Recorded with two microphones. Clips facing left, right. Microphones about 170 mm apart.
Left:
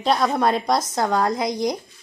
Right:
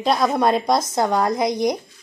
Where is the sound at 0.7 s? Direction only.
20° right (ahead or behind).